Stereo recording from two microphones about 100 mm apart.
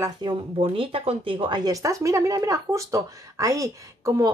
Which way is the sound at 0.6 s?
65° right (ahead or behind).